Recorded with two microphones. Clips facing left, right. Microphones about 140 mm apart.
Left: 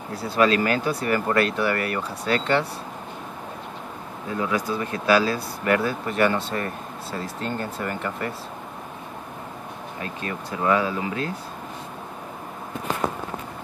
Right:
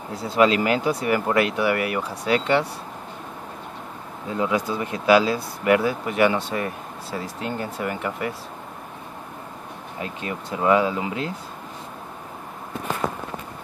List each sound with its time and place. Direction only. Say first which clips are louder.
0.1 s speech: right 1 dB; 20° right (ahead or behind)
4.4 s speech: right 2 dB; 20° right (ahead or behind)
9.9 s speech: right 2 dB; 15° right (ahead or behind)